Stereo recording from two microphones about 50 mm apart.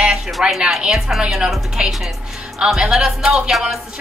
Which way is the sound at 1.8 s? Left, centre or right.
Centre.